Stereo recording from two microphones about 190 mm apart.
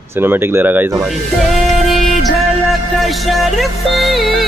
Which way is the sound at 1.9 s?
Centre (ahead or behind).